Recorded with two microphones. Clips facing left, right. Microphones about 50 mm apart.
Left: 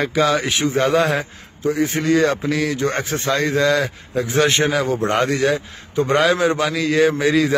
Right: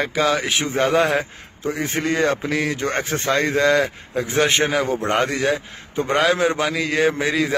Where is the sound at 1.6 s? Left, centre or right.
Right.